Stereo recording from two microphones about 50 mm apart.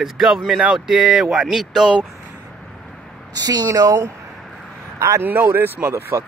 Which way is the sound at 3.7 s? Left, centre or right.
Right.